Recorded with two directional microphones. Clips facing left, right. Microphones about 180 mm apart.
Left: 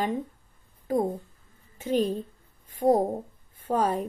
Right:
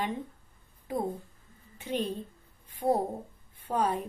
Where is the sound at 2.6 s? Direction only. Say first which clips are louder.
Left 6 dB; 40° left (ahead or behind).